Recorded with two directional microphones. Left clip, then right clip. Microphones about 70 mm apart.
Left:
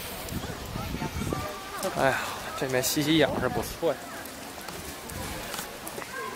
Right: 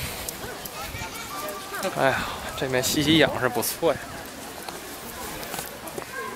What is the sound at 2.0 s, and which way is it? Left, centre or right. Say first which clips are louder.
Speech: right 2 dB; centre.